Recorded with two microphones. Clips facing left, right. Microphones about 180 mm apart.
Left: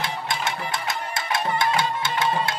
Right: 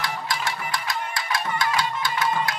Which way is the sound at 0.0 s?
25° left (ahead or behind).